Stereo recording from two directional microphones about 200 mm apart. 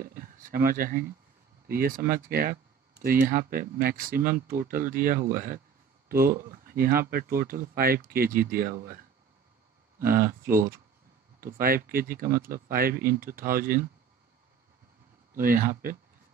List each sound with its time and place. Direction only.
0.0 s speech: 45° right (ahead or behind)
10.0 s speech: 45° right (ahead or behind)
15.3 s speech: 45° right (ahead or behind)